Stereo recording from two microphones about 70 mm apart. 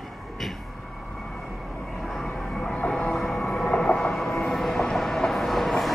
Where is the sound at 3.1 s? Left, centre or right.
Centre.